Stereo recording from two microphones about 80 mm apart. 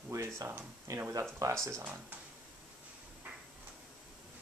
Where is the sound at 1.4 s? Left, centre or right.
Right.